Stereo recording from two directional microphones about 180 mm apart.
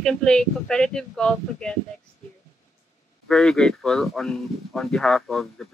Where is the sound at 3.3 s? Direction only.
5° left (ahead or behind).